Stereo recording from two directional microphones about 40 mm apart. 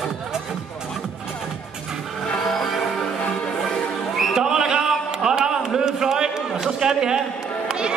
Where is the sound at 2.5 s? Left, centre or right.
Centre.